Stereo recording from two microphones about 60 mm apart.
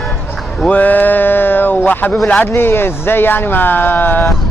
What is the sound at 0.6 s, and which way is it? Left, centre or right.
Speech, left.